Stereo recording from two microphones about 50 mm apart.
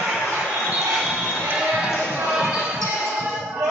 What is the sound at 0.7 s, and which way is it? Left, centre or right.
Basketball bounce, centre.